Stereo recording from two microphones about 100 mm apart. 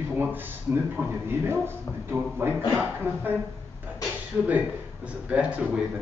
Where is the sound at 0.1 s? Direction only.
20° right (ahead or behind).